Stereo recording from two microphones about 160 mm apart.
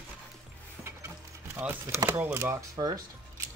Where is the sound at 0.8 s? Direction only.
15° right (ahead or behind).